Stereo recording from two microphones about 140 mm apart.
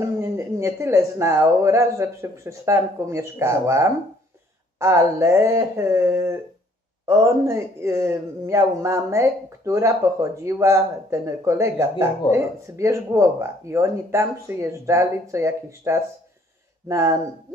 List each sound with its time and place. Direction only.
0.0 s speech: 20° right (ahead or behind)